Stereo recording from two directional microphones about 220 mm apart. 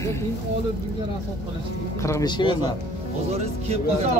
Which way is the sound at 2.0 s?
15° left (ahead or behind).